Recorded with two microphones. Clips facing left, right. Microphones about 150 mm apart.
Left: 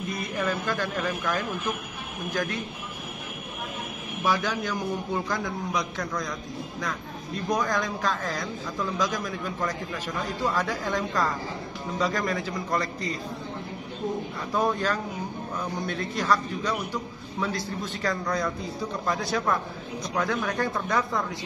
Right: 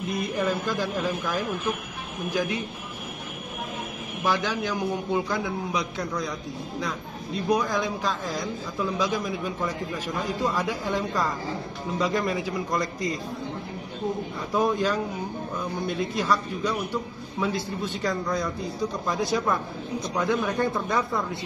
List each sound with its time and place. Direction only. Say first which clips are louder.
0.4 s a man's voice: even; 10° right (ahead or behind)
4.2 s a man's voice: even; centre (ahead or behind)
7.6 s a man's voice: even; centre (ahead or behind)
14.5 s a man's voice: right 2 dB; 5° right (ahead or behind)
16.0 s a man's voice: even; 10° right (ahead or behind)